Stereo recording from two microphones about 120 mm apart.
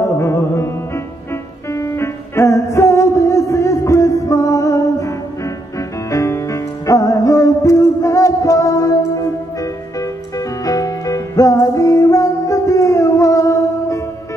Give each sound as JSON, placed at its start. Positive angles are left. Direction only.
{"t": 0.0, "sound": "music", "side_deg": 25}